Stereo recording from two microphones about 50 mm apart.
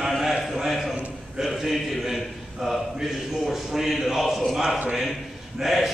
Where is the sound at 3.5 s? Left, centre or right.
Centre.